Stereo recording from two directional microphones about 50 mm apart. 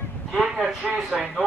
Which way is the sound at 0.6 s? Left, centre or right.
Centre.